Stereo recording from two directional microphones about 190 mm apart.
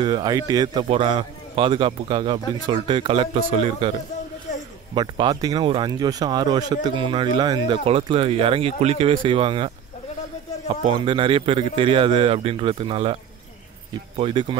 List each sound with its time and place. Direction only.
0.0 s a man's voice: 20° right (ahead or behind)
4.9 s a man's voice: 25° right (ahead or behind)
10.7 s a man's voice: 30° right (ahead or behind)